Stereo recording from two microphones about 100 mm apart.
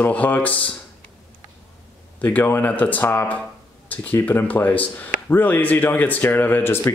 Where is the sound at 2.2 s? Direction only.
15° left (ahead or behind).